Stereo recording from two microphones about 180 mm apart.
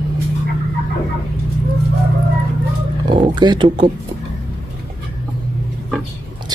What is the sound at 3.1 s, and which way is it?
Speech, 25° right (ahead or behind).